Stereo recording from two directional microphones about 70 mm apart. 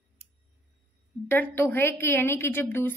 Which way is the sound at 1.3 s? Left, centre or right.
Left.